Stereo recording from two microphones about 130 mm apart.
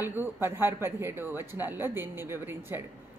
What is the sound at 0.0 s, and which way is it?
Speech, 15° right (ahead or behind).